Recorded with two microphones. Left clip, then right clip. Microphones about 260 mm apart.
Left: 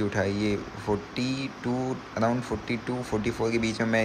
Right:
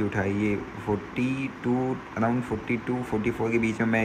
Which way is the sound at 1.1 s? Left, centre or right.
Left.